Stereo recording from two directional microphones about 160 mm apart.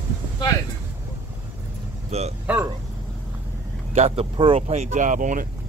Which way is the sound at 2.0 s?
40° right (ahead or behind).